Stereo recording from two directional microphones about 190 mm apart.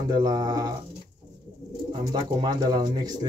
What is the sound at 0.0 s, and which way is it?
Speech, 20° right (ahead or behind).